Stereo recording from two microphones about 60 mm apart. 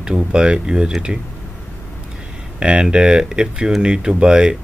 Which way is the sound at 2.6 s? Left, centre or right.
Centre.